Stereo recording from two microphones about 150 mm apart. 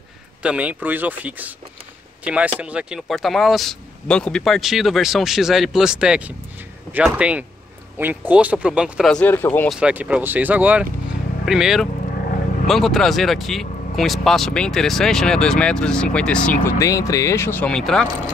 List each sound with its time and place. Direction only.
0.4 s speech: 10° right (ahead or behind)
9.1 s speech: 10° left (ahead or behind)
9.7 s speech: 5° right (ahead or behind)
16.8 s speech: 20° left (ahead or behind); by 18.0 s 5° left (ahead or behind)